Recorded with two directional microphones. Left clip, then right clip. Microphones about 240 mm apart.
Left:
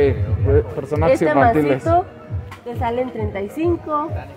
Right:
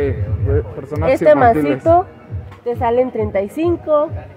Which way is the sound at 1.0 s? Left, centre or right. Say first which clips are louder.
Right 4 dB; right.